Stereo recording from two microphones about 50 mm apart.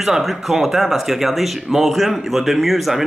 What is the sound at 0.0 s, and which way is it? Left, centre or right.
Speech, centre.